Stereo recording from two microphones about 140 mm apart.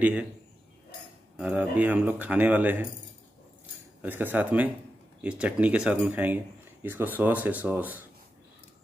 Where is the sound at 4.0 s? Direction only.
15° right (ahead or behind).